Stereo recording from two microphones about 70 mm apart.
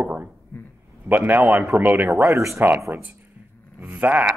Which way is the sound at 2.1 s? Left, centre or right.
Right.